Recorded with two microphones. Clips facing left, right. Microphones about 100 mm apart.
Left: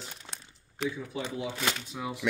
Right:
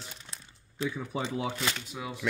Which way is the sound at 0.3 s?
75° left (ahead or behind).